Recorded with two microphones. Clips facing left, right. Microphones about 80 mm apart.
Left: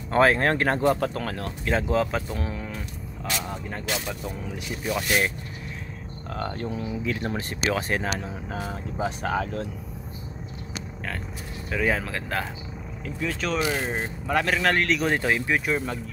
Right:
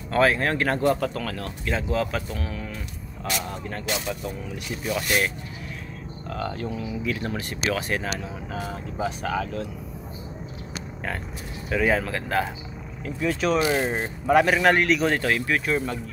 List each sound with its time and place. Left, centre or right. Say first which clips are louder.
0.1 s speech: left 1 dB; left
0.7 s speech: even; left
3.6 s speech: right 2 dB; centre
6.3 s speech: right 1 dB; centre
6.9 s speech: even; left
11.7 s a man's voice: right 3 dB; centre
15.1 s speech: even; centre